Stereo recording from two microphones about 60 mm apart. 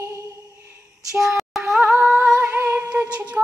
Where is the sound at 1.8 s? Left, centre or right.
Right.